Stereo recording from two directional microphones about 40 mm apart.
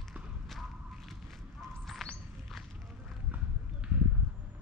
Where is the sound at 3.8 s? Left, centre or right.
Right.